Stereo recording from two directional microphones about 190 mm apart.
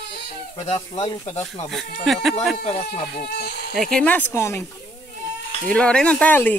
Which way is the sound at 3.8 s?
5° left (ahead or behind).